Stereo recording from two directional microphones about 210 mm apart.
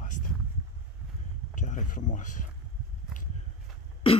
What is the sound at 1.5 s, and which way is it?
Speech, 40° left (ahead or behind).